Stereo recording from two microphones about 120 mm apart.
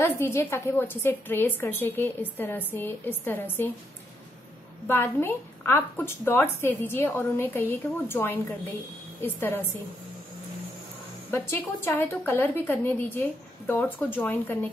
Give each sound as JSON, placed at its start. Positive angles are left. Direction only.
{"t": 0.2, "sound": "a woman's voice", "side_deg": 20}
{"t": 4.8, "sound": "a woman's voice", "side_deg": 20}
{"t": 11.2, "sound": "a woman's voice", "side_deg": 20}